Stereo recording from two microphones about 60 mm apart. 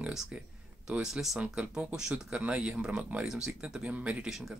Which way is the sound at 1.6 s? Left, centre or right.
Right.